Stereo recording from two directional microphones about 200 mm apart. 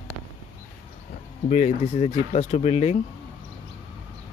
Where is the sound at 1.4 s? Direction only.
35° left (ahead or behind).